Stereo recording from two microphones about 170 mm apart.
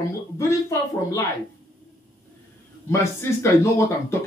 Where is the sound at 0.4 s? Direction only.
15° left (ahead or behind).